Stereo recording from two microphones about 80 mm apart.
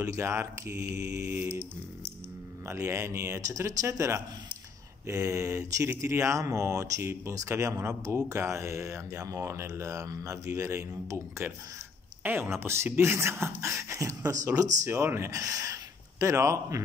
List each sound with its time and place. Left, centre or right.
0.0 s speech: right
1.3 s mantra: right
2.6 s speech: right
12.2 s speech: right
14.9 s speech: right